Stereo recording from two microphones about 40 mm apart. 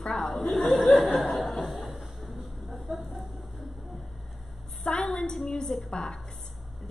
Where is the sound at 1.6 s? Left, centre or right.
Centre.